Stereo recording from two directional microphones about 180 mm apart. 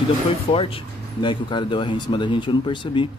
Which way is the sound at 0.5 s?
30° left (ahead or behind).